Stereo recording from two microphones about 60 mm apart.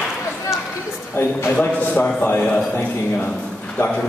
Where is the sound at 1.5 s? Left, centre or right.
Left.